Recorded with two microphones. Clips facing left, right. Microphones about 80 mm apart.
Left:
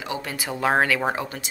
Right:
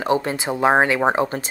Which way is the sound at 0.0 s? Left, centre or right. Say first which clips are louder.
Right 9 dB; right.